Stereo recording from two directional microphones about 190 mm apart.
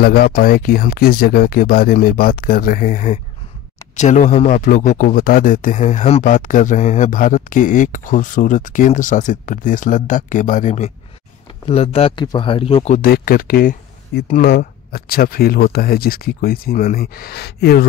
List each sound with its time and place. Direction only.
0.0 s speech: 55° left (ahead or behind)